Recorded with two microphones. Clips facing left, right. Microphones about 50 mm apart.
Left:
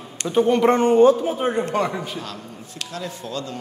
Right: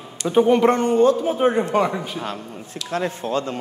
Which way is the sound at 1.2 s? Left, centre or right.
Centre.